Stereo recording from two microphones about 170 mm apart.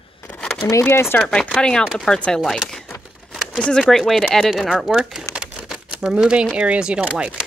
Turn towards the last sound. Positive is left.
turn(degrees=-5)  # may be behind; listen again after turning